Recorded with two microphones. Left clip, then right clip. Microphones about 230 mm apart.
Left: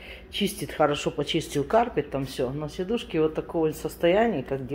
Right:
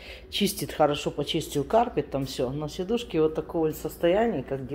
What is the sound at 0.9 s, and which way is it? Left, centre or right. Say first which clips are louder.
Speech: left 1 dB; centre.